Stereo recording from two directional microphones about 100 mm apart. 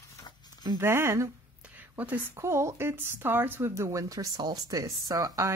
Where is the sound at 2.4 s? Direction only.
30° right (ahead or behind).